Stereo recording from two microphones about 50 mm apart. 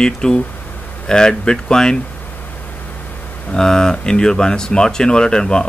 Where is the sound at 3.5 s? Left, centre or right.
Centre.